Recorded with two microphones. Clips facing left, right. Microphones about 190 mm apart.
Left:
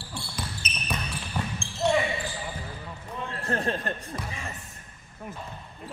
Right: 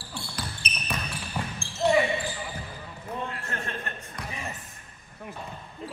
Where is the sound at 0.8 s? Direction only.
5° right (ahead or behind).